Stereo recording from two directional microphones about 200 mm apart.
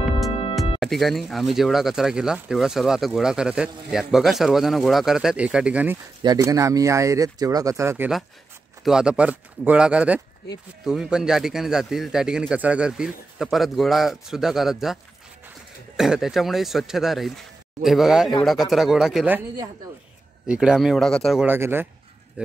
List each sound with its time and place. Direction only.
0.7 s speech: centre (ahead or behind)
6.2 s speech: 20° right (ahead or behind); by 15.0 s centre (ahead or behind)
16.0 s speech: centre (ahead or behind)
20.4 s speech: 5° right (ahead or behind)